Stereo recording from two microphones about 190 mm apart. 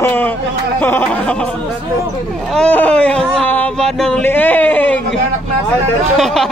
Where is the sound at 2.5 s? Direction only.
5° left (ahead or behind).